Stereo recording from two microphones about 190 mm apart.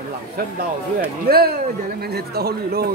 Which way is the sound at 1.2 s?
55° right (ahead or behind).